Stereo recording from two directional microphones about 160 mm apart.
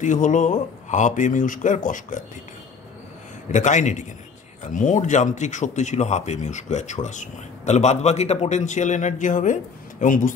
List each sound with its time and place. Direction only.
0.0 s speech: 50° left (ahead or behind)
3.5 s speech: 50° left (ahead or behind)